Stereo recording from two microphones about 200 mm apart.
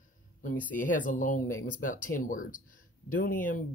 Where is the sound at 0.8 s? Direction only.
40° left (ahead or behind).